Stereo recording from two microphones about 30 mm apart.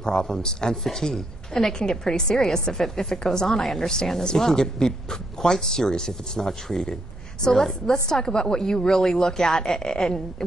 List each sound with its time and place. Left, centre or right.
0.0 s speech: left
7.8 s speech: left
8.8 s speech: centre